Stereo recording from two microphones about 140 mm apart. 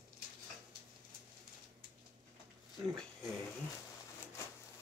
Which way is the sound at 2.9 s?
5° left (ahead or behind).